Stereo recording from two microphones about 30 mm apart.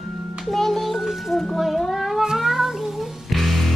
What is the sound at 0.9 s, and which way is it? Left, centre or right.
Music, centre.